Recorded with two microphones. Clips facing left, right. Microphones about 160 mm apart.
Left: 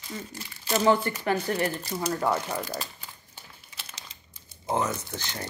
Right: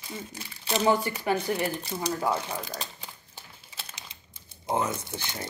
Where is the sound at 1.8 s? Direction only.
Centre (ahead or behind).